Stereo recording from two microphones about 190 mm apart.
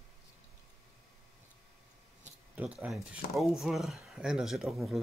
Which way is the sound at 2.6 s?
5° right (ahead or behind).